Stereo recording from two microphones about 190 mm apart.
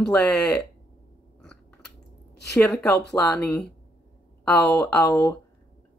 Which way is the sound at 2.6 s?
5° left (ahead or behind).